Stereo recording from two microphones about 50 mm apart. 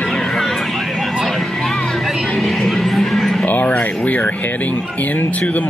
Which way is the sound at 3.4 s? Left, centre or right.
Left.